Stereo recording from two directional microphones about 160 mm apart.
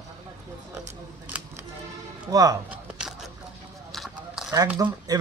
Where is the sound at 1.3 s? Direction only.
10° right (ahead or behind).